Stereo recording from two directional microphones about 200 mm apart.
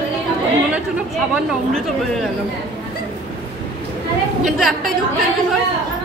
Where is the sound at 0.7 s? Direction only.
5° right (ahead or behind).